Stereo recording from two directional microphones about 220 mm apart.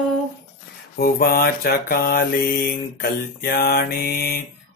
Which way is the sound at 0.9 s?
45° left (ahead or behind).